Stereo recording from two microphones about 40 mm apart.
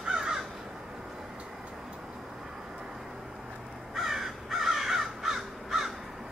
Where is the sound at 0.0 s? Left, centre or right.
Centre.